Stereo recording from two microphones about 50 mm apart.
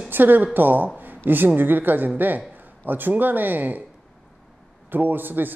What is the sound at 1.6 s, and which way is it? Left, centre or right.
Speech, right.